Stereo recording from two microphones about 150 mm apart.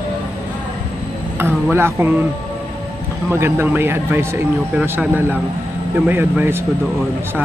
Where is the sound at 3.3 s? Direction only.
15° right (ahead or behind).